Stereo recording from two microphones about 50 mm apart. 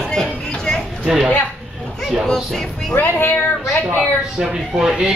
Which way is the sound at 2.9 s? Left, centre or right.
Left.